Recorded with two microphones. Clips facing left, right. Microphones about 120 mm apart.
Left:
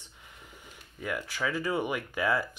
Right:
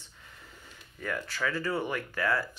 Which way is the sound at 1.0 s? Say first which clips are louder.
Even; 10° left (ahead or behind).